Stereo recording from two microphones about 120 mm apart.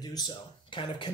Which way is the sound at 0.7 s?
40° left (ahead or behind).